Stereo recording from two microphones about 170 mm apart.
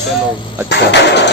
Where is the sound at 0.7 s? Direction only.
90° left.